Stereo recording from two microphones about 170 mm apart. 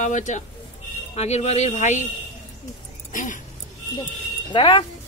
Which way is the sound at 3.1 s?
50° left (ahead or behind).